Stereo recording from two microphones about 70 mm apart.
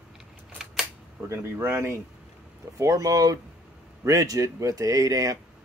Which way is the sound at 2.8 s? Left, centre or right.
Right.